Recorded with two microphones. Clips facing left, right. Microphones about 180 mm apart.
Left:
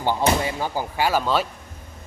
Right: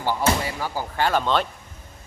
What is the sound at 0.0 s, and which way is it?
Speech, 20° left (ahead or behind).